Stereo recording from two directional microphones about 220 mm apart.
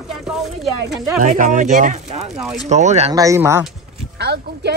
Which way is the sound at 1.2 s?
35° right (ahead or behind).